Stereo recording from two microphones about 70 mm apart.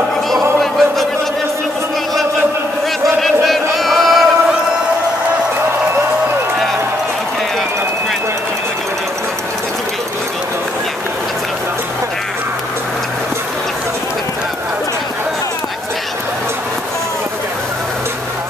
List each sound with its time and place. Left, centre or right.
0.3 s music: centre
3.4 s battle cry: centre